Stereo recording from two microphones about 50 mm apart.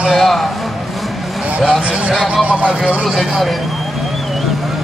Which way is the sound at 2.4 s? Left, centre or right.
Right.